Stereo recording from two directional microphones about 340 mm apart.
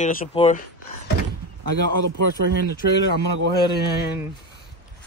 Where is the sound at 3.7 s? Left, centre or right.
Left.